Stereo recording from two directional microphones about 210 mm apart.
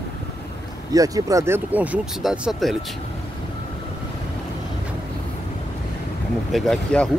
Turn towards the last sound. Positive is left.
turn(degrees=5)  # may be behind; listen again after turning